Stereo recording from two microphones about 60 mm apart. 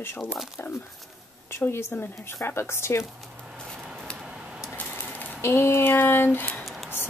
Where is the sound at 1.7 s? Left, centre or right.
Left.